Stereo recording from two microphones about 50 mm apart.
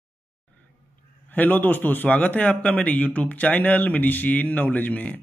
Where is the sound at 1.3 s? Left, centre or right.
Left.